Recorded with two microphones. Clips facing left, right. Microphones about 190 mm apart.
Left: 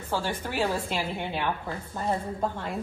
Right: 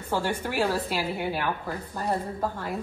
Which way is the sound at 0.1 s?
15° right (ahead or behind).